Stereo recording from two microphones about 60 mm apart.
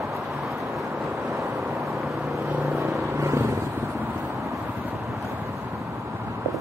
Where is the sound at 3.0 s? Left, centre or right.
Right.